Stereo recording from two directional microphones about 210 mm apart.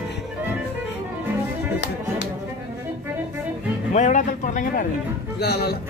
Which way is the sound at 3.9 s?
35° left (ahead or behind).